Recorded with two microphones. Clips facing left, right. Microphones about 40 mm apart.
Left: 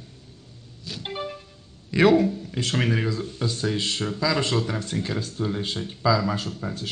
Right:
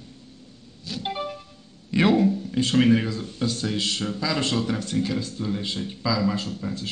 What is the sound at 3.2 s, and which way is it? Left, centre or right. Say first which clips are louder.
Speech: even; centre.